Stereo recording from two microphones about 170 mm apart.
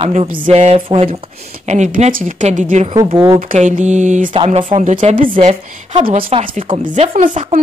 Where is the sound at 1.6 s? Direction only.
45° right (ahead or behind).